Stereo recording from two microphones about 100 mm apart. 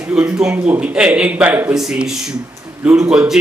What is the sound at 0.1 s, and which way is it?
A man's voice, 10° right (ahead or behind).